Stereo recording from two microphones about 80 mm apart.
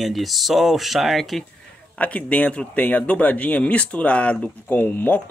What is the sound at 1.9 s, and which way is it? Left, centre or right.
Speech, centre.